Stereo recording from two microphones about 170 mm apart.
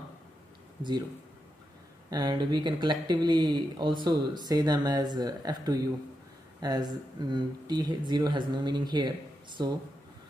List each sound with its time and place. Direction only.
2.0 s speech: 25° right (ahead or behind)